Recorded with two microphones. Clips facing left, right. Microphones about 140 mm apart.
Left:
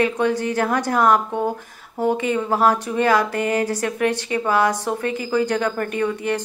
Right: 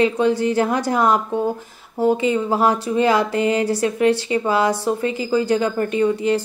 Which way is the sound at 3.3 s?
55° left (ahead or behind).